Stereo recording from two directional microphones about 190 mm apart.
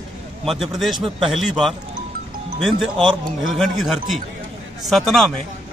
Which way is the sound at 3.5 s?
Centre (ahead or behind).